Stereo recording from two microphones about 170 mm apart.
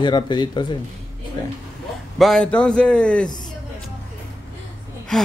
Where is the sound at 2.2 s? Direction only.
5° left (ahead or behind).